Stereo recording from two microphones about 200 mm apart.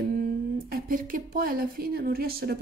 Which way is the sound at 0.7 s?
45° right (ahead or behind).